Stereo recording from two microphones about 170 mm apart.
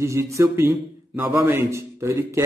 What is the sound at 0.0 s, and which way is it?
A man's voice, 15° right (ahead or behind).